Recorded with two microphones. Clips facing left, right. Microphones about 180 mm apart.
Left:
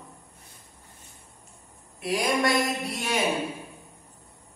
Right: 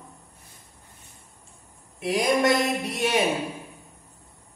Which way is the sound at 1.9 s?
20° right (ahead or behind).